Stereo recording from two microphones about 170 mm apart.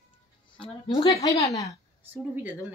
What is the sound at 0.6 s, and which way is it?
Speech, 30° left (ahead or behind).